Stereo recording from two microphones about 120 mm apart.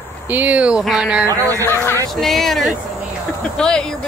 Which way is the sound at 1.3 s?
25° right (ahead or behind).